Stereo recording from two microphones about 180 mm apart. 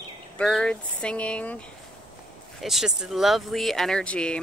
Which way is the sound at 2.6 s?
Centre (ahead or behind).